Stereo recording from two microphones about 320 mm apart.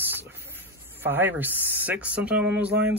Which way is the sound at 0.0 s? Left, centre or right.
Centre.